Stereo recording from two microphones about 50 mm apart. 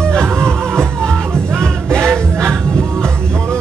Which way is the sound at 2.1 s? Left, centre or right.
Centre.